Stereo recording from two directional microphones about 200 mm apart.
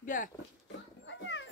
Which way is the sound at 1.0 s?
65° left (ahead or behind).